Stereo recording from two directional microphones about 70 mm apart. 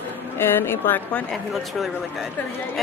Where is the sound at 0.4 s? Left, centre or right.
Left.